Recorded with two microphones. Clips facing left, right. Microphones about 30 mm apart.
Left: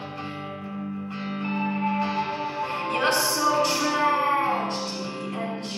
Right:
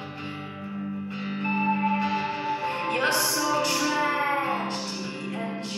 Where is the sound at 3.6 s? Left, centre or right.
Left.